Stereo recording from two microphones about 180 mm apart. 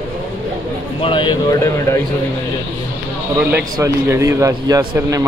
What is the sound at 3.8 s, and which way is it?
Speech, 15° right (ahead or behind).